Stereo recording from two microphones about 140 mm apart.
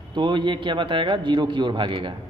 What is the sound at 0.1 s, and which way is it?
Speech, 35° right (ahead or behind).